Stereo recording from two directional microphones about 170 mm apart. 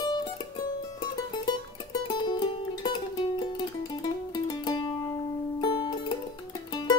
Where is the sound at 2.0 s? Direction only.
25° left (ahead or behind).